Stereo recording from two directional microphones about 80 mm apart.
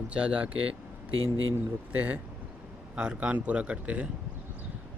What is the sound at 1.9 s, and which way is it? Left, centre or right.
Speech, right.